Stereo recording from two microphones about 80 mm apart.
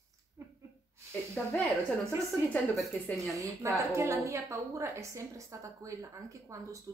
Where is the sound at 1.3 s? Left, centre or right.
Centre.